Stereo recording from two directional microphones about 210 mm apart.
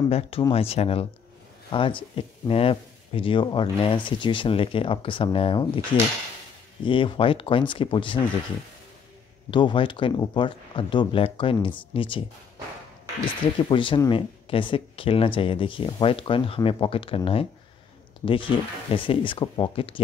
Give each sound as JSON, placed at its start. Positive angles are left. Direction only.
{"t": 0.5, "sound": "speech", "side_deg": 30}
{"t": 9.5, "sound": "speech", "side_deg": 25}
{"t": 13.6, "sound": "speech", "side_deg": 25}